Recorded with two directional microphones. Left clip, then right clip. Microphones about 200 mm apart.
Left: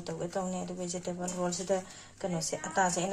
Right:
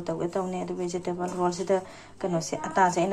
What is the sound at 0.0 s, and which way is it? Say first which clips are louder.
A woman's voice: right 6 dB; 15° right (ahead or behind).